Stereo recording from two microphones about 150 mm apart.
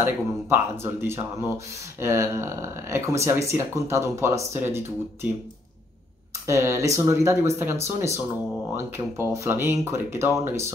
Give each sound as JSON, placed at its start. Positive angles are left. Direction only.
{"t": 0.0, "sound": "speech", "side_deg": -15}
{"t": 6.4, "sound": "speech", "side_deg": -15}